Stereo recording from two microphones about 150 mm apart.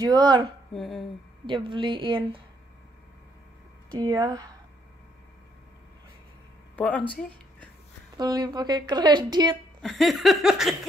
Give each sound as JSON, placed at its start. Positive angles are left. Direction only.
{"t": 0.0, "sound": "a woman's voice", "side_deg": -25}
{"t": 0.7, "sound": "a sound", "side_deg": 0}
{"t": 1.4, "sound": "speech", "side_deg": -35}
{"t": 3.9, "sound": "a woman's voice", "side_deg": -25}
{"t": 6.8, "sound": "speech", "side_deg": 10}
{"t": 8.2, "sound": "a woman's voice", "side_deg": -25}
{"t": 9.8, "sound": "a sound", "side_deg": 0}